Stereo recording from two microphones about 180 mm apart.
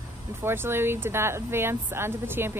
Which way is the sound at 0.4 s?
15° right (ahead or behind).